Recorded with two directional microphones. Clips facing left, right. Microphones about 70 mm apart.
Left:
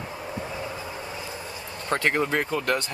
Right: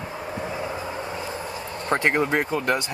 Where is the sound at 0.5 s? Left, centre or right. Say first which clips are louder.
Right 4 dB; right.